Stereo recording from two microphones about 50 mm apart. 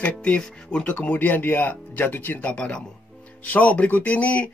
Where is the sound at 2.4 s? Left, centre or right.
Left.